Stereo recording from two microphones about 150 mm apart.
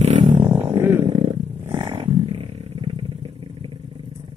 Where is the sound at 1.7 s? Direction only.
40° right (ahead or behind).